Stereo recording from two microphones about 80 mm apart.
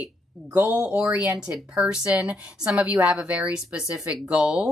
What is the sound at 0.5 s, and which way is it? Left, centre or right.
A woman's voice, centre.